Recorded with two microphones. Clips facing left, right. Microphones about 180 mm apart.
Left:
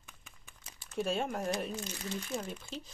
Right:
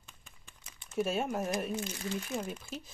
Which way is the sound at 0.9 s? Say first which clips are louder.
Right 2 dB; 5° right (ahead or behind).